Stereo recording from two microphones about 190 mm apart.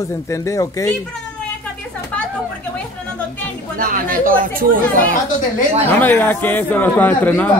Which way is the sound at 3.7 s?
45° right (ahead or behind).